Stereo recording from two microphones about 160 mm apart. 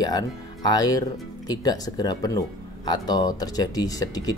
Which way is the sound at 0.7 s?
25° left (ahead or behind).